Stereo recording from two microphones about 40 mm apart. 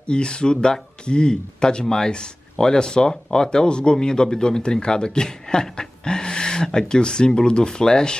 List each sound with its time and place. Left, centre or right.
0.1 s speech: left